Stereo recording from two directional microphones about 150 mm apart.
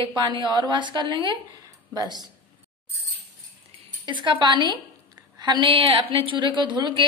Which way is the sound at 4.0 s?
30° right (ahead or behind).